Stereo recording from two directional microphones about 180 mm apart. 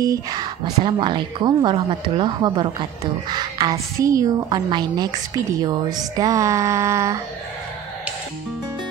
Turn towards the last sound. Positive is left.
turn(degrees=-15)  # may be behind; listen again after turning